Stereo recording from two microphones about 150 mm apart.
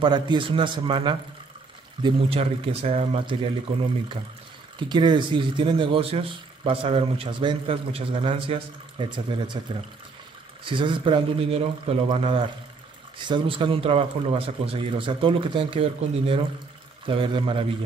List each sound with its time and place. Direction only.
0.0 s a man's voice: 30° right (ahead or behind)
4.7 s a man's voice: 30° right (ahead or behind)
10.6 s a man's voice: 35° right (ahead or behind)